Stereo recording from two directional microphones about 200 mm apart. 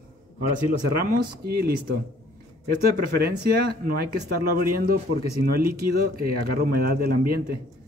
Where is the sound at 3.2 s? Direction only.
50° right (ahead or behind).